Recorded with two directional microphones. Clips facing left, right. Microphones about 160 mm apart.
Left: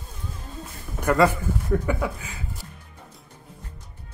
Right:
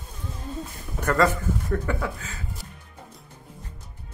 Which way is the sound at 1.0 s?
10° left (ahead or behind).